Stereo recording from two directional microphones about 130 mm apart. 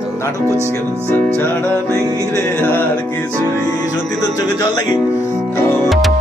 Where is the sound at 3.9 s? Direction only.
25° left (ahead or behind).